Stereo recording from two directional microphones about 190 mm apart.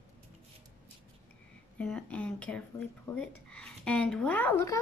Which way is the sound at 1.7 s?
5° left (ahead or behind).